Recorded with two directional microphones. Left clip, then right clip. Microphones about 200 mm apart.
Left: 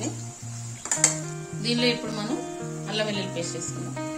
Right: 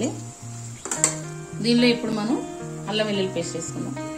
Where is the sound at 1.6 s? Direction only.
25° right (ahead or behind).